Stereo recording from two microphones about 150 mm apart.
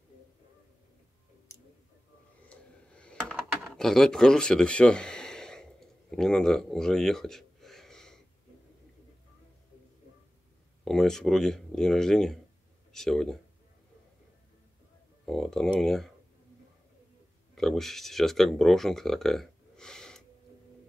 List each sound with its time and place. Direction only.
1.5 s clicking: 20° left (ahead or behind)
2.5 s computer keyboard: 5° left (ahead or behind)
10.8 s speech: 5° left (ahead or behind)
15.2 s speech: centre (ahead or behind)
17.6 s speech: centre (ahead or behind)